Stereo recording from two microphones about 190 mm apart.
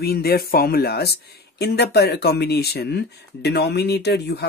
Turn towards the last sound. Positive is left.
turn(degrees=60)  # may be behind; listen again after turning